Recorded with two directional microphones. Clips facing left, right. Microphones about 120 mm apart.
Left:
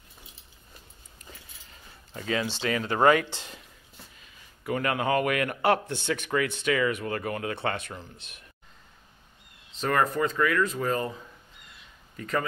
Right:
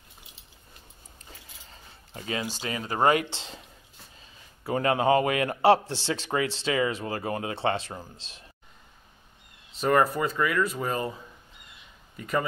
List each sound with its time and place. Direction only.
2.6 s a man's voice: 30° right (ahead or behind)
9.8 s speech: 10° right (ahead or behind)
12.2 s speech: 10° right (ahead or behind)